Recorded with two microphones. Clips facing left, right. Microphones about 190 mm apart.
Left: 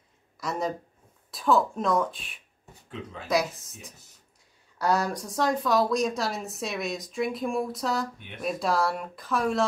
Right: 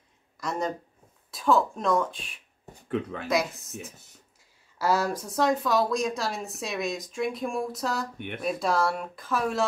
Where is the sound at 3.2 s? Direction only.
Centre (ahead or behind).